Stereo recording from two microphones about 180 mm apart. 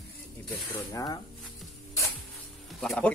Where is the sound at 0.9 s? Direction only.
20° left (ahead or behind).